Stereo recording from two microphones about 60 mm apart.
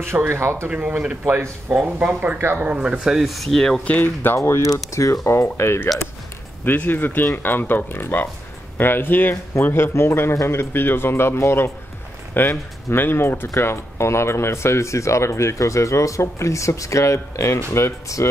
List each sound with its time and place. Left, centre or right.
0.0 s speech: right
0.7 s speech: right
1.2 s speech: right
2.0 s speech: right; by 3.4 s centre
3.5 s speech: centre
4.0 s speech: left
4.4 s speech: left
6.6 s speech: left